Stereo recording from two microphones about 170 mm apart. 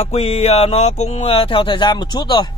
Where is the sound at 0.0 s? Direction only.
40° left (ahead or behind).